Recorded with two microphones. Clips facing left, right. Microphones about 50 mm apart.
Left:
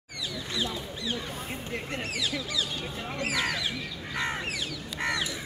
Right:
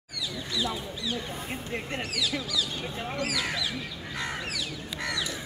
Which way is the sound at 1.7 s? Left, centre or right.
Right.